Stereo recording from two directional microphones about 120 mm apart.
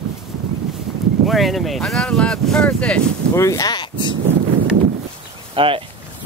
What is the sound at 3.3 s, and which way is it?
Speech, 25° left (ahead or behind).